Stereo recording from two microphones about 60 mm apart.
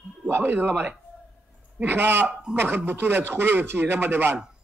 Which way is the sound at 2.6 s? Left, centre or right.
Right.